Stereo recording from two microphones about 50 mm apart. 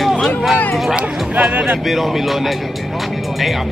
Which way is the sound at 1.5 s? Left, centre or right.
Right.